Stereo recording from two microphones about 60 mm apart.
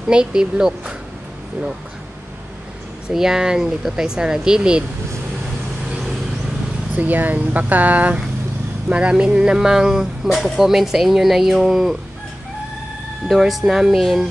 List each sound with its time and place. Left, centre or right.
0.1 s speech: centre
3.1 s speech: centre
7.0 s speech: right; by 12.0 s centre
13.3 s speech: centre